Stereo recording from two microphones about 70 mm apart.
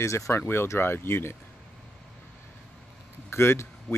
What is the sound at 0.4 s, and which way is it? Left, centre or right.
Speech, left.